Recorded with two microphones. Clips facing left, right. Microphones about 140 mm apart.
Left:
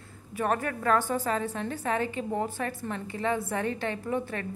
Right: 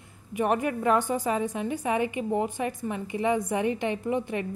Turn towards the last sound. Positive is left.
turn(degrees=-15)  # may be behind; listen again after turning